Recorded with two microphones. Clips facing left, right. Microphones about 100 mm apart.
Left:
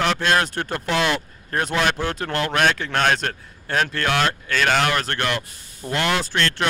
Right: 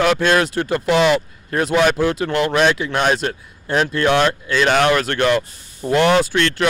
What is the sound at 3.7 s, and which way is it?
Speech, 25° right (ahead or behind).